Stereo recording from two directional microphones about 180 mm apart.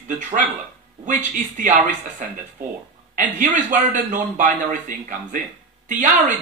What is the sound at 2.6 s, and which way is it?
Speech, 10° right (ahead or behind).